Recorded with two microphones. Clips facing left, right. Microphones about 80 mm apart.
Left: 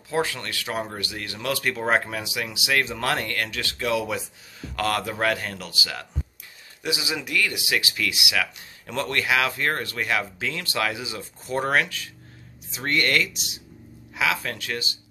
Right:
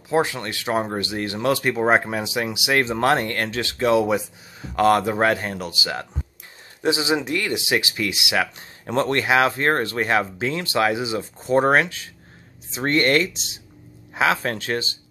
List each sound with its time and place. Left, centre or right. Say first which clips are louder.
0.1 s speech: right 5 dB; right